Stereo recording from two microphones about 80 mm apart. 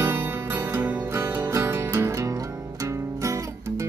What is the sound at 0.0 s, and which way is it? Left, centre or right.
Music, right.